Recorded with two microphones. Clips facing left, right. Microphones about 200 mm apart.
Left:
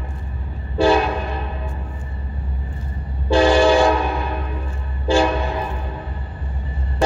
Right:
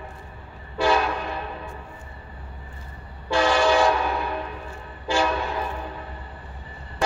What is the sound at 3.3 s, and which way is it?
Train, 30° left (ahead or behind).